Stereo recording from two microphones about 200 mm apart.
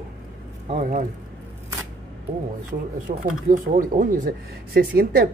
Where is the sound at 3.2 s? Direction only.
45° right (ahead or behind).